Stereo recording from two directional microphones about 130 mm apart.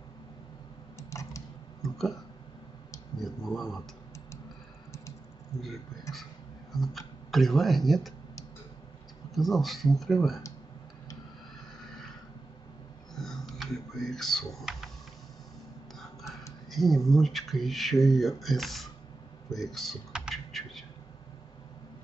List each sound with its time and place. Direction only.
0.9 s typing: 25° left (ahead or behind)
1.8 s a sound: centre (ahead or behind)
3.2 s a sound: centre (ahead or behind)
5.5 s speech: 55° left (ahead or behind)
6.8 s speech: centre (ahead or behind)
9.3 s speech: centre (ahead or behind)
13.1 s typing: 5° left (ahead or behind)
16.0 s whispering: centre (ahead or behind)
16.7 s speech: centre (ahead or behind)
19.5 s computer keyboard: centre (ahead or behind)